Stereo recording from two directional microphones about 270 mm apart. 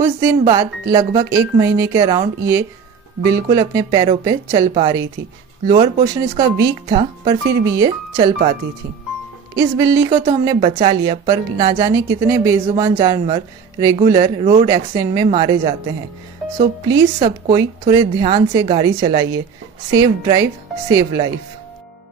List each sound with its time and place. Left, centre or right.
0.0 s a woman's voice: centre
9.6 s a woman's voice: centre